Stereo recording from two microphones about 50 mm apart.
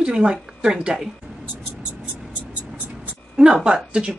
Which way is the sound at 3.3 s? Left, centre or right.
Centre.